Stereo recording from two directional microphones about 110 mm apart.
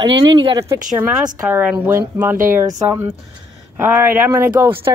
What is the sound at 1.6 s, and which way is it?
Speech, 15° right (ahead or behind).